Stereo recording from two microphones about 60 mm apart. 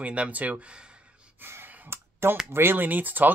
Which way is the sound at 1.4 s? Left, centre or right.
Right.